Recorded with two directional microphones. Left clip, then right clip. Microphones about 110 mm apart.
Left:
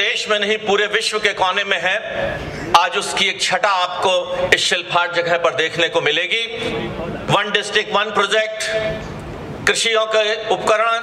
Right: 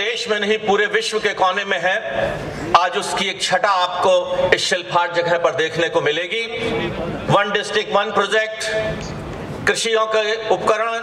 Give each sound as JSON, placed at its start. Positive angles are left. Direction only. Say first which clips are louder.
{"t": 0.0, "sound": "a man's voice", "louder": "left 2 dB", "side_deg": 20}
{"t": 7.2, "sound": "a man's voice", "louder": "even", "side_deg": 20}